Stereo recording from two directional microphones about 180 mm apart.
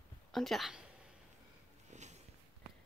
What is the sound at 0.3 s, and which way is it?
Speech, centre (ahead or behind).